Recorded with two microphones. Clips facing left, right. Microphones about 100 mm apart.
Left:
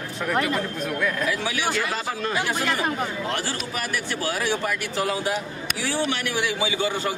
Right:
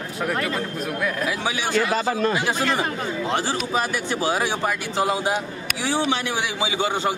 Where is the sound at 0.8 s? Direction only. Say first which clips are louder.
Even; 10° right (ahead or behind).